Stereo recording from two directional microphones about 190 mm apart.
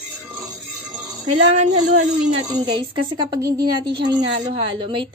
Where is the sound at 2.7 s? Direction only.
20° right (ahead or behind).